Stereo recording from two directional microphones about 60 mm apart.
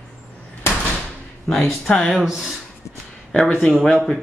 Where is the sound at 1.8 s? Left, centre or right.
Centre.